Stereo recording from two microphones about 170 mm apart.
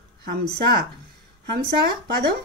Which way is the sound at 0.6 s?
65° right (ahead or behind).